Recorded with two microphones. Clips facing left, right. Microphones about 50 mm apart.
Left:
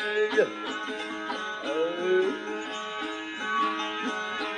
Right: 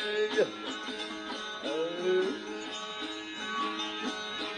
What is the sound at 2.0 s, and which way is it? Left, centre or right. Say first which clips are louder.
Music: left 3 dB; left.